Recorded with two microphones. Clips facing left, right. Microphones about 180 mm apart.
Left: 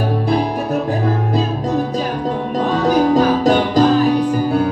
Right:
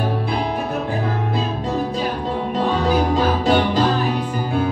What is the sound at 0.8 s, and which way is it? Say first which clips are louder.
Music: left 4 dB; 40° left (ahead or behind).